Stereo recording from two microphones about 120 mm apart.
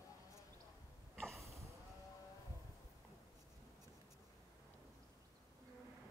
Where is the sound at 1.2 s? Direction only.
Centre (ahead or behind).